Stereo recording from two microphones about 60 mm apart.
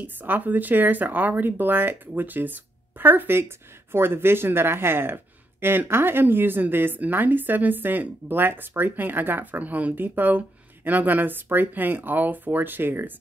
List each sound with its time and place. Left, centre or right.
0.0 s speech: right